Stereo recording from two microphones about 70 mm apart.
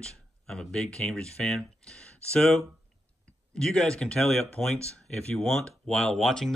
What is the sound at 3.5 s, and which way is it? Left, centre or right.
Speech, centre.